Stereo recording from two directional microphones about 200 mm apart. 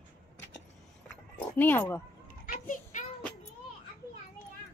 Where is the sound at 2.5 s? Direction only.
45° left (ahead or behind).